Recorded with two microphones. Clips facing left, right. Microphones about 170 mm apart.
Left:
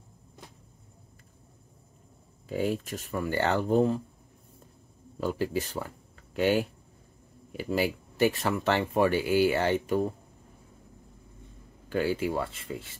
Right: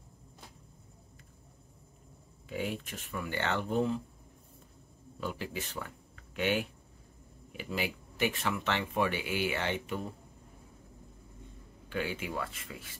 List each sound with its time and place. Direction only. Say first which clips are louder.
2.4 s speech: left 7 dB; 35° left (ahead or behind)
5.2 s speech: left 8 dB; 40° left (ahead or behind)
11.9 s speech: left 8 dB; 40° left (ahead or behind)